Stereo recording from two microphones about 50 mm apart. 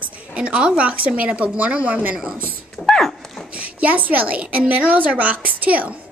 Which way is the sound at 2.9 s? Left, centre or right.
Centre.